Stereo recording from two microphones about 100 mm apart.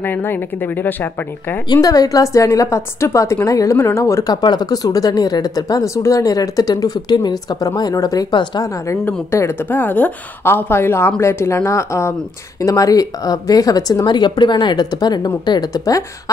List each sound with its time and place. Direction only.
0.0 s a woman's voice: 20° left (ahead or behind)
1.7 s speech: 40° left (ahead or behind)
8.8 s a woman's voice: 30° left (ahead or behind)